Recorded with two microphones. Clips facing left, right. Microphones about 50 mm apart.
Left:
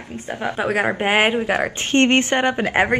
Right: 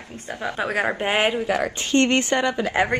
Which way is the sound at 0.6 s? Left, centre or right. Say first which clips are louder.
Left 3 dB; centre.